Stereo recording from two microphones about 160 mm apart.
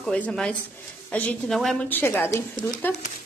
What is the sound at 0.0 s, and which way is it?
A woman's voice, 5° left (ahead or behind).